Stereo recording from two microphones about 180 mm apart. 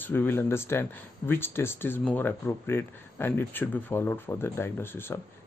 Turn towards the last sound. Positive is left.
turn(degrees=10)  # may be behind; listen again after turning